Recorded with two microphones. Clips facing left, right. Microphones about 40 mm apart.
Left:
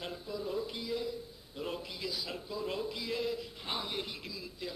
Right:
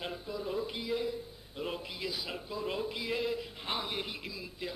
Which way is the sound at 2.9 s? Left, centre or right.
Right.